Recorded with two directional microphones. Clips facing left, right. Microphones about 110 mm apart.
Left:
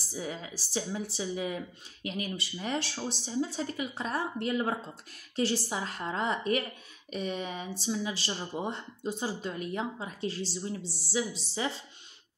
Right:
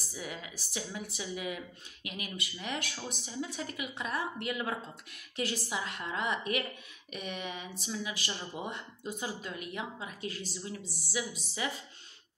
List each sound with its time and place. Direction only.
0.1 s speech: 30° left (ahead or behind)